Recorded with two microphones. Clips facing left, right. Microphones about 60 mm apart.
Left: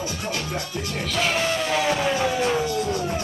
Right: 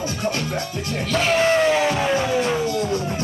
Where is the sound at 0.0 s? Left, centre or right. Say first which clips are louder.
Right 4 dB; right.